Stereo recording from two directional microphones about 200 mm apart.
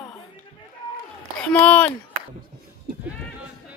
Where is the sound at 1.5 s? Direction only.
5° left (ahead or behind).